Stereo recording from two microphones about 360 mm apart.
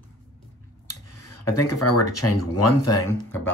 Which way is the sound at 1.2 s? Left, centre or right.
Left.